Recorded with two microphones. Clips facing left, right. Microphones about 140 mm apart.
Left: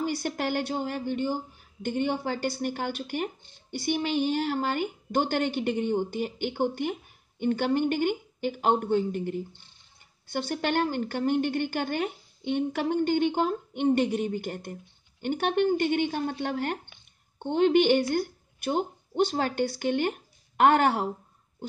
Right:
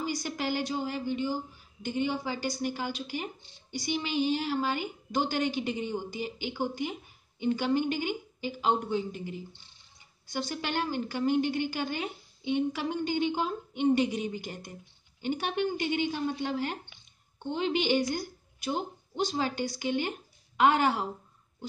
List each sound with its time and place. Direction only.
0.0 s a woman's voice: 55° left (ahead or behind)